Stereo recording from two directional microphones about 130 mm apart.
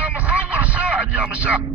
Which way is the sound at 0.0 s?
10° right (ahead or behind).